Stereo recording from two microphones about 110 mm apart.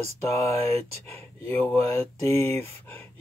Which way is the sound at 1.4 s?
15° left (ahead or behind).